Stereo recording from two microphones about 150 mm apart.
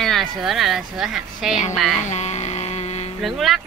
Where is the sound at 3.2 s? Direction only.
Centre (ahead or behind).